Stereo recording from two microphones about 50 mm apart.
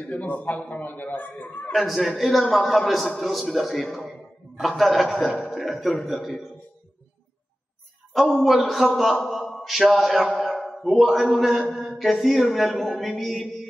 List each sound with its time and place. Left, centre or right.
0.1 s a man's voice: left
1.7 s a man's voice: centre
8.1 s a woman's voice: centre